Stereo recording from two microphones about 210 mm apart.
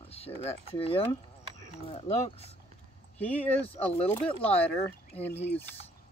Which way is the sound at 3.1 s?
5° left (ahead or behind).